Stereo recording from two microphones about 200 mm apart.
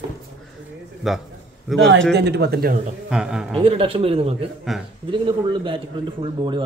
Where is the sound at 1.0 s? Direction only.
Centre (ahead or behind).